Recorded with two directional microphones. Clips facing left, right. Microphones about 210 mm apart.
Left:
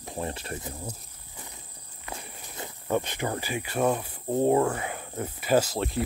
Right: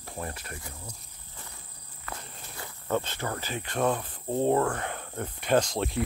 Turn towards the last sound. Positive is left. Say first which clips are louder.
# left 1 dB
turn(degrees=0)  # may be behind; listen again after turning